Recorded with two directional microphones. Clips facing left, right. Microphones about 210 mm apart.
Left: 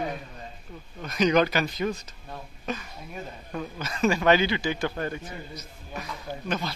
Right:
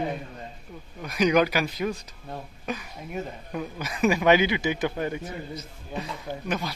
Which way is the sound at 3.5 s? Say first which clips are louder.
Even; 15° right (ahead or behind).